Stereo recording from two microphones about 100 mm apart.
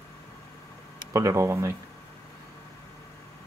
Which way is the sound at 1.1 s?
30° right (ahead or behind).